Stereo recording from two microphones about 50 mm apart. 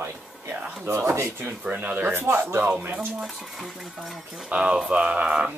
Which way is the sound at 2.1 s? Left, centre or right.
Right.